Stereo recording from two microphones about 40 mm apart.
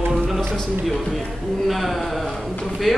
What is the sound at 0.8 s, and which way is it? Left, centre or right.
A man's voice, centre.